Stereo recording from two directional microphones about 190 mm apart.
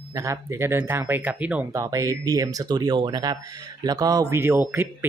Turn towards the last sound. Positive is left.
turn(degrees=-10)  # may be behind; listen again after turning